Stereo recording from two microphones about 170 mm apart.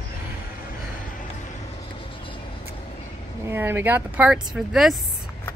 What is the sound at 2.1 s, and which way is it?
Vehicle, 30° left (ahead or behind).